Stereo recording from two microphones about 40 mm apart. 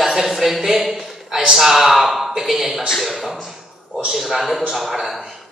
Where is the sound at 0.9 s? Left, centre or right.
Centre.